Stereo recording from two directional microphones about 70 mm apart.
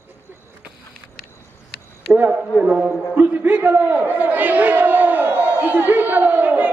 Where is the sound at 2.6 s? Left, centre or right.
Right.